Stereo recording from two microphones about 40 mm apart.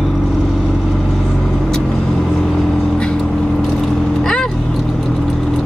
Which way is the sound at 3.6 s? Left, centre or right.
Centre.